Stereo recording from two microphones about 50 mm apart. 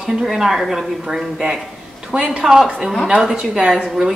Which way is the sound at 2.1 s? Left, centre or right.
Centre.